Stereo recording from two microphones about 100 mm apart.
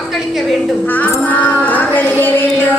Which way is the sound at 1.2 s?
15° left (ahead or behind).